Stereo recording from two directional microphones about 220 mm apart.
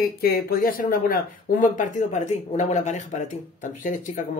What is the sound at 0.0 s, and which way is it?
Speech, 45° left (ahead or behind).